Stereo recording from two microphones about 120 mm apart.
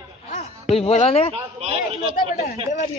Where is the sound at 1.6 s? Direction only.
55° right (ahead or behind).